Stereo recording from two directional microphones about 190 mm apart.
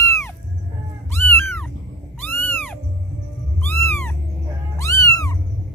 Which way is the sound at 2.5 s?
10° left (ahead or behind).